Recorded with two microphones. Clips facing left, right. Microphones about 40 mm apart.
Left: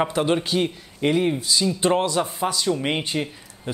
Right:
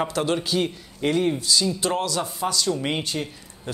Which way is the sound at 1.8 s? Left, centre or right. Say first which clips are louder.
Left 4 dB; left.